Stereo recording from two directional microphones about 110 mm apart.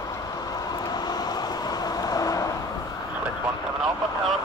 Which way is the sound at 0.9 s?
40° left (ahead or behind).